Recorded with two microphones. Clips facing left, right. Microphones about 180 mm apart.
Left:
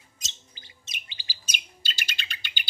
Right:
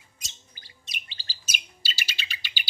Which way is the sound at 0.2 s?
25° left (ahead or behind).